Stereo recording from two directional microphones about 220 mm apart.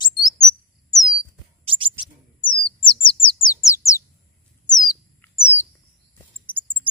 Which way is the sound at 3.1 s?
25° left (ahead or behind).